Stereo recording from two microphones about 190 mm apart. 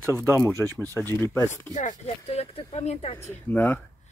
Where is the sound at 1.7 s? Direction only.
40° left (ahead or behind).